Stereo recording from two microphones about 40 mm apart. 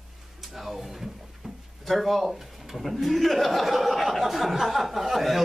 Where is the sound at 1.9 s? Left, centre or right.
Centre.